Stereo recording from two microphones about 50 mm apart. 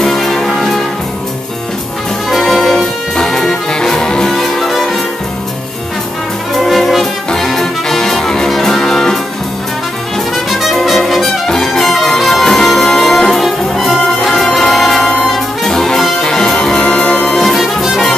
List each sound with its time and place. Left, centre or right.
0.0 s music: centre
2.2 s brass instrument: centre
6.5 s music: centre
10.3 s music: centre
15.0 s music: centre
15.6 s brass instrument: centre
16.2 s music: centre
17.0 s music: left
17.3 s music: centre